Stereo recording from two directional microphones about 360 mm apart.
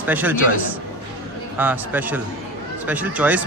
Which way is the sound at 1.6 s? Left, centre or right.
Centre.